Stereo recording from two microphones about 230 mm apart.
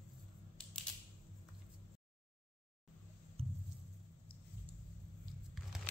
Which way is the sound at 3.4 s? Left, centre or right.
Right.